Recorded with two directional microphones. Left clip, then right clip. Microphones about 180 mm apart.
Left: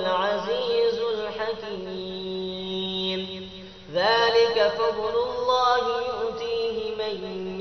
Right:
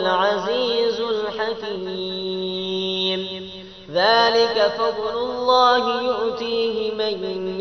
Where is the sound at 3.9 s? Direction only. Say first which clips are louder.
Right 4 dB; 30° right (ahead or behind).